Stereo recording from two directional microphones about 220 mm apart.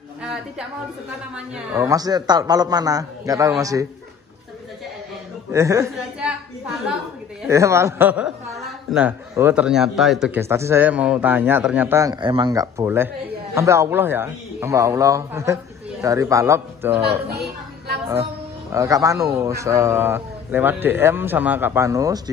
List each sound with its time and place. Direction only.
0.2 s a sound: 5° right (ahead or behind)
1.3 s a man's voice: 10° right (ahead or behind)
5.5 s a woman's voice: 15° right (ahead or behind)
7.4 s a man's voice: 15° right (ahead or behind)
18.7 s a man's voice: 15° right (ahead or behind)